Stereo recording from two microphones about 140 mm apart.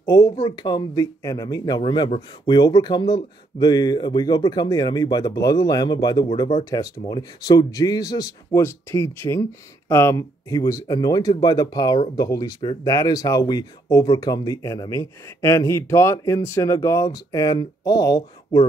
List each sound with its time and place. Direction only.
0.0 s a man's voice: 25° left (ahead or behind)